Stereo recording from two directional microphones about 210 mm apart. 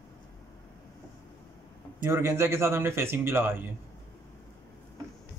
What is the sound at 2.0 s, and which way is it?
A man's voice, 10° right (ahead or behind).